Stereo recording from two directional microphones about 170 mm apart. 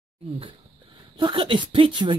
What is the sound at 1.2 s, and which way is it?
Speech, 30° right (ahead or behind).